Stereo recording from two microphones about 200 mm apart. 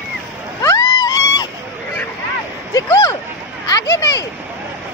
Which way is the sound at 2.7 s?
15° left (ahead or behind).